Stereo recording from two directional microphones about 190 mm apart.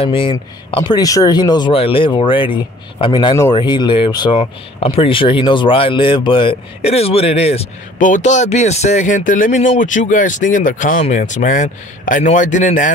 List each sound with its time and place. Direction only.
0.0 s speech: 30° left (ahead or behind)